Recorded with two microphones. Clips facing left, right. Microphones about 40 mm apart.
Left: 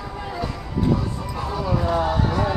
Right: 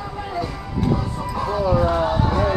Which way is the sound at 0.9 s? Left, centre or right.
Centre.